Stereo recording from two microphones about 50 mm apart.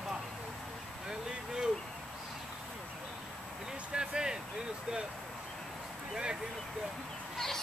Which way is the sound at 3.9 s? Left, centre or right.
Centre.